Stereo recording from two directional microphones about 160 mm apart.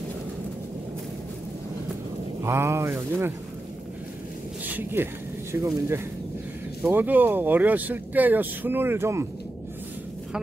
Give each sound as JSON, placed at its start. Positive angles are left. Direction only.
{"t": 2.4, "sound": "speech", "side_deg": -15}
{"t": 4.6, "sound": "speech", "side_deg": -10}